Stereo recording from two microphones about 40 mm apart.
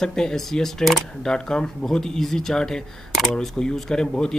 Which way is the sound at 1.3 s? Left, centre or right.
Centre.